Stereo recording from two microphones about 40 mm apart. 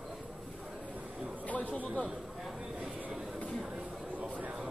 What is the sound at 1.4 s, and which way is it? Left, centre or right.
Chatter, left.